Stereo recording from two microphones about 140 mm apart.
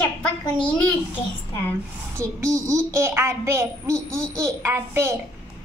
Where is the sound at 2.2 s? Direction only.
20° right (ahead or behind).